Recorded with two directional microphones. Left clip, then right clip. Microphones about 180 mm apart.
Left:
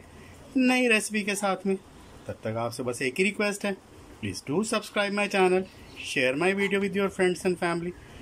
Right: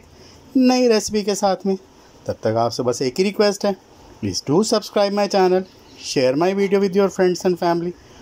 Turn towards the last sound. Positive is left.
turn(degrees=-25)  # may be behind; listen again after turning